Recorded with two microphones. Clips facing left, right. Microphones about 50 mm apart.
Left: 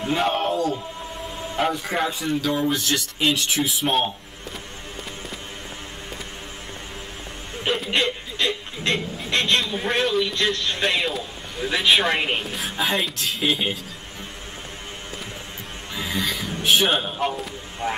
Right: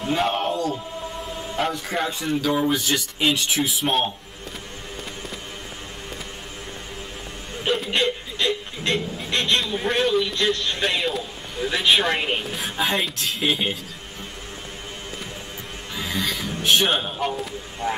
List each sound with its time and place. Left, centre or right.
0.1 s a man's voice: centre
2.2 s a man's voice: centre
7.6 s hiccup: centre
9.3 s a man's voice: left
9.6 s a man's voice: centre
15.9 s a man's voice: centre